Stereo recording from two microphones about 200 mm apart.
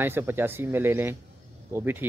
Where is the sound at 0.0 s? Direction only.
10° right (ahead or behind).